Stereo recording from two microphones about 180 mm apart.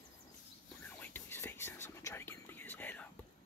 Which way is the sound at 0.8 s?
10° left (ahead or behind).